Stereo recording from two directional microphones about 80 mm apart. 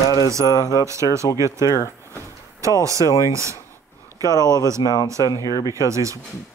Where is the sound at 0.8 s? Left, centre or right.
Right.